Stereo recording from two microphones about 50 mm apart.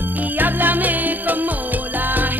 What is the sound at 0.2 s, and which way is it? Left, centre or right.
Music, right.